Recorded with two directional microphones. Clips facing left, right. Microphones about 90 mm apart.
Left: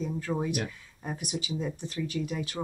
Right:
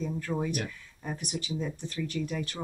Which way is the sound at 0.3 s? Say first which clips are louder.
Left 1 dB; 30° left (ahead or behind).